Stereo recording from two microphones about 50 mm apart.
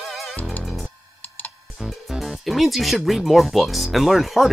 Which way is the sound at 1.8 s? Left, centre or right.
Centre.